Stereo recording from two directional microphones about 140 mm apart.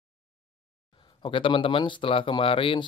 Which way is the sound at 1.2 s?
35° left (ahead or behind).